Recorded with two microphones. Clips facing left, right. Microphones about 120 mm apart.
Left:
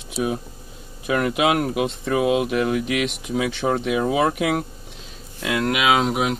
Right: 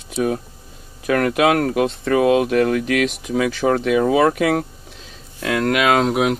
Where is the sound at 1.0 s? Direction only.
60° right (ahead or behind).